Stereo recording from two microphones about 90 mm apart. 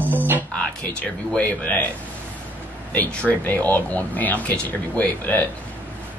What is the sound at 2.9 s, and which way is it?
Speech, 15° left (ahead or behind).